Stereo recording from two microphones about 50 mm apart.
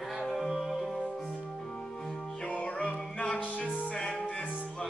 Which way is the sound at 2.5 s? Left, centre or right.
Left.